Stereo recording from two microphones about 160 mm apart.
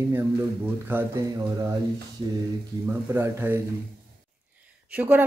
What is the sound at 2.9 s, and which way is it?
Speech, 15° right (ahead or behind).